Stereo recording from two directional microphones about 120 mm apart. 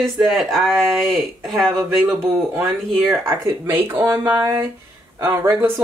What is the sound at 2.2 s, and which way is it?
Speech, 20° right (ahead or behind).